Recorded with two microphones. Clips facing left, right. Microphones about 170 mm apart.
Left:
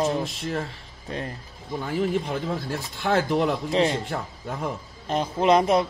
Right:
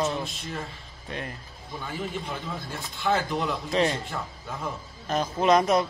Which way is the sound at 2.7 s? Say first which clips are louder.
Even; 80° left.